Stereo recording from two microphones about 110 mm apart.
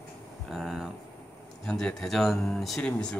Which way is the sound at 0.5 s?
5° right (ahead or behind).